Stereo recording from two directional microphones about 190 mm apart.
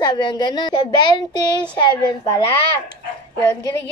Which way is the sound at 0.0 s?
25° left (ahead or behind).